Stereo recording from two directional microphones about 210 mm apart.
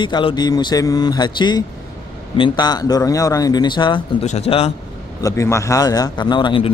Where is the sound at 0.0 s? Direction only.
20° left (ahead or behind).